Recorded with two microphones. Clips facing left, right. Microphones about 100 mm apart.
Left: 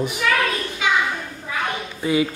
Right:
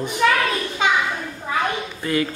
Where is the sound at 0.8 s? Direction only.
35° right (ahead or behind).